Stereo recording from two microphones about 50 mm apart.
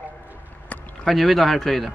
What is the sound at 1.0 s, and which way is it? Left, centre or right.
Speech, centre.